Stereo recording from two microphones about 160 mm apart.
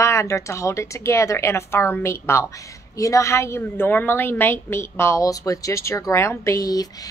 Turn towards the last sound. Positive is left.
turn(degrees=20)  # may be behind; listen again after turning